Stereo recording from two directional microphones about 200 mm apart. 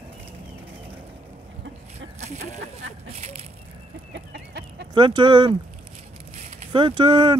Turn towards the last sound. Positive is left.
turn(degrees=-25)  # may be behind; listen again after turning